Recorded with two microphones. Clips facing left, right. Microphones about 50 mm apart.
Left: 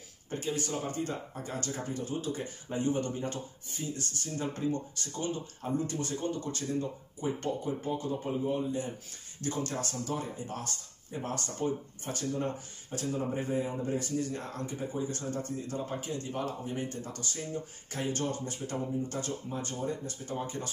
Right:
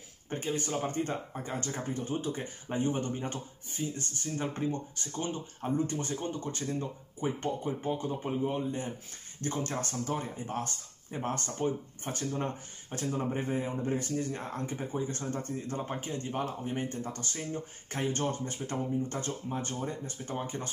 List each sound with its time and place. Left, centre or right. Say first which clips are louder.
0.3 s speech: right 1 dB; right
8.5 s speech: left 1 dB; right